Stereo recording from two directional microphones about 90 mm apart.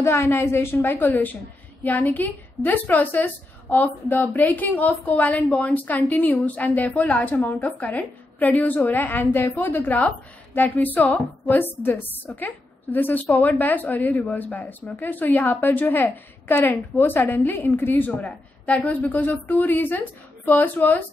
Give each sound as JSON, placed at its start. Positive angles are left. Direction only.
{"t": 0.0, "sound": "a woman's voice", "side_deg": 30}